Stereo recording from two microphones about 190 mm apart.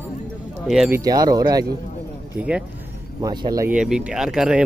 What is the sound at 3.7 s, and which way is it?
Speech, 5° right (ahead or behind).